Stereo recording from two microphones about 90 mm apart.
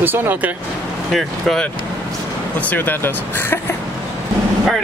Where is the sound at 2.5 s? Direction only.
20° left (ahead or behind).